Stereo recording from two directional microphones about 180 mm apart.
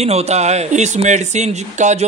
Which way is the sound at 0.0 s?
35° right (ahead or behind).